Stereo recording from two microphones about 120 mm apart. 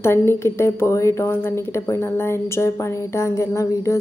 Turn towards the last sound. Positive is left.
turn(degrees=25)  # may be behind; listen again after turning